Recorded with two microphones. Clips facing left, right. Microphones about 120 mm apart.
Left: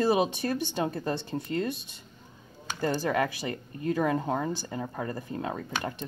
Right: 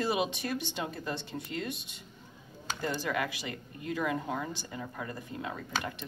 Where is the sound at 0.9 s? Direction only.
45° left (ahead or behind).